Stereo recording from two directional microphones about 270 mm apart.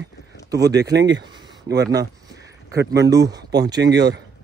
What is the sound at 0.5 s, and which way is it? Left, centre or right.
Speech, centre.